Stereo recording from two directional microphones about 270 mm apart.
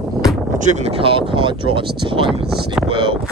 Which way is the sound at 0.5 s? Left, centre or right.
Right.